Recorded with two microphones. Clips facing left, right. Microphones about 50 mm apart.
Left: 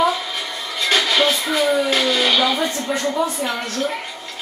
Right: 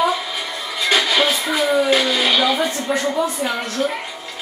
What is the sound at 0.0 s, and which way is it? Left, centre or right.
Music, centre.